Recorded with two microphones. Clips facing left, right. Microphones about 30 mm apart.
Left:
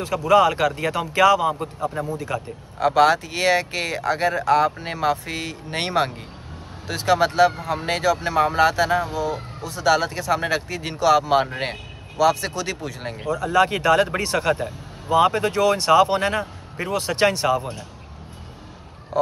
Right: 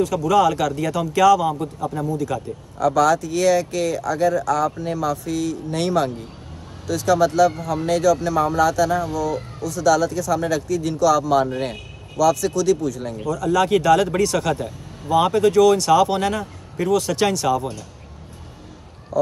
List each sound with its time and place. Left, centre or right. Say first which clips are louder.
0.0 s speech: even; left